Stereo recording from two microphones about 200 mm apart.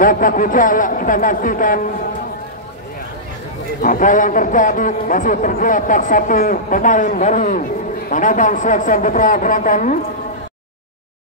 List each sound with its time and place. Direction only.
0.0 s a man's voice: 45° left (ahead or behind)
3.8 s a man's voice: 40° left (ahead or behind)